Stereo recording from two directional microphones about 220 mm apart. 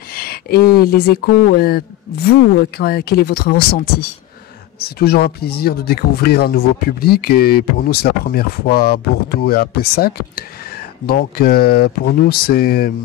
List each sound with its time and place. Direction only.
0.1 s speech: 45° left (ahead or behind)